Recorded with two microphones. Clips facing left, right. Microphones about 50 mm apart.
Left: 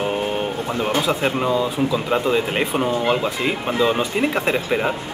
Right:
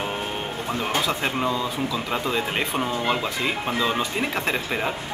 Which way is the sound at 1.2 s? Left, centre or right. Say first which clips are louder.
Left 5 dB; centre.